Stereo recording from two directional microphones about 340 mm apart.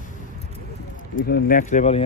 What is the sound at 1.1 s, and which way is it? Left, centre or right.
Speech, left.